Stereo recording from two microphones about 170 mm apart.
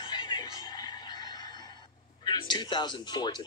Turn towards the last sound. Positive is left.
turn(degrees=25)  # may be behind; listen again after turning